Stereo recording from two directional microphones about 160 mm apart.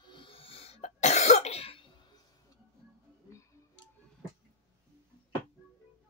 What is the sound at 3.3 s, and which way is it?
Tick-tock, 20° left (ahead or behind).